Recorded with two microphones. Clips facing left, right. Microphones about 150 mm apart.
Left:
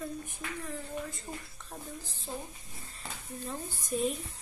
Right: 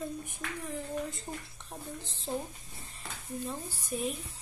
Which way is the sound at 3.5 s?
10° right (ahead or behind).